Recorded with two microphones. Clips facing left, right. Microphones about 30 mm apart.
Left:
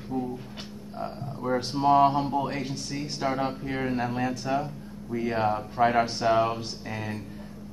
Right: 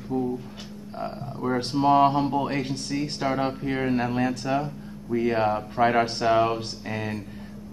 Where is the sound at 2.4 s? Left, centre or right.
Right.